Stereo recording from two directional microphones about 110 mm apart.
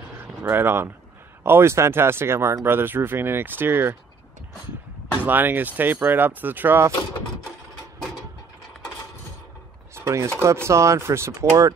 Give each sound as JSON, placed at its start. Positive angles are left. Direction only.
{"t": 0.2, "sound": "speech", "side_deg": -20}
{"t": 5.2, "sound": "speech", "side_deg": -15}
{"t": 9.9, "sound": "speech", "side_deg": -25}